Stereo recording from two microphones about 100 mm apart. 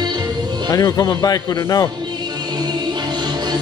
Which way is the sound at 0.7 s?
35° left (ahead or behind).